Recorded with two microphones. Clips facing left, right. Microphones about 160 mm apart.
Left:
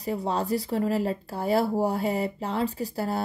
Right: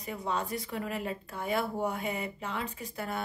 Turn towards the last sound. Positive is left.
turn(degrees=35)  # may be behind; listen again after turning